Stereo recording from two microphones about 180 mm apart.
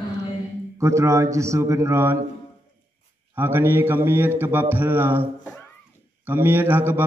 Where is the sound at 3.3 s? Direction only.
10° right (ahead or behind).